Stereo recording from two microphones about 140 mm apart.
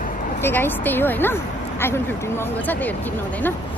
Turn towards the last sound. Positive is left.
turn(degrees=10)  # may be behind; listen again after turning